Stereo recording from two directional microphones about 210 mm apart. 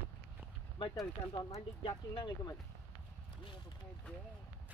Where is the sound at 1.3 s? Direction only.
20° left (ahead or behind).